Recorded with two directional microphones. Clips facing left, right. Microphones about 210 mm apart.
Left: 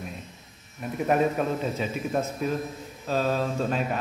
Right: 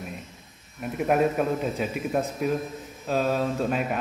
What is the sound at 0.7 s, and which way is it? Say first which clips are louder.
A man's voice: right 1 dB; 5° right (ahead or behind).